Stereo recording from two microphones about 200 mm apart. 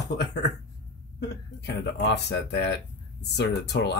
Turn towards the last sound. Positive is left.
turn(degrees=60)  # may be behind; listen again after turning